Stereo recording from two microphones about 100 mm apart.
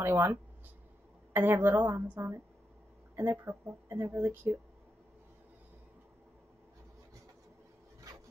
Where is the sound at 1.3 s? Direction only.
20° right (ahead or behind).